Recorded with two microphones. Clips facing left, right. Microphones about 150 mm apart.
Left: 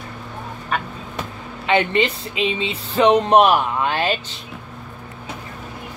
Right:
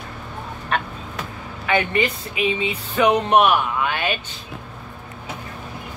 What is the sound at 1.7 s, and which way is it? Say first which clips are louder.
Speech: left 2 dB; 25° left (ahead or behind).